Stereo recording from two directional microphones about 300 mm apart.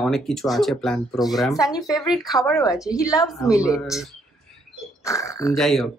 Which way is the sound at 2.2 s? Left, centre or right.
Centre.